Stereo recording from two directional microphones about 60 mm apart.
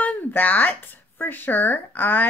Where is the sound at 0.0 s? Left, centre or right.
Left.